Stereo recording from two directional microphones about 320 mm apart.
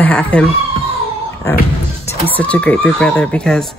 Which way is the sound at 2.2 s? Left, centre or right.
Centre.